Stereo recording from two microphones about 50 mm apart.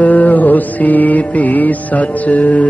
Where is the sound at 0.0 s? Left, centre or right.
Left.